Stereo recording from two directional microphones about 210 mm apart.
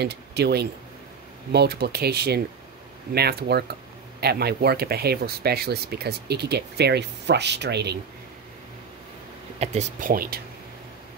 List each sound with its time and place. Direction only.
0.0 s speech: 50° right (ahead or behind)
9.6 s speech: 35° right (ahead or behind)